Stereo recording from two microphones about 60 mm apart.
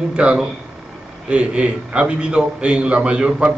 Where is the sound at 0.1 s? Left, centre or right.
Centre.